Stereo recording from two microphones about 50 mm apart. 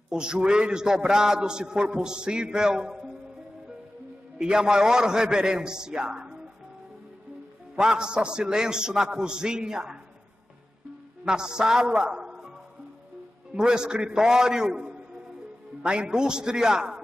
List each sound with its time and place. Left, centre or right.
0.1 s a man's voice: centre
4.4 s a man's voice: centre
7.7 s a man's voice: centre
11.2 s a man's voice: centre
13.6 s a man's voice: centre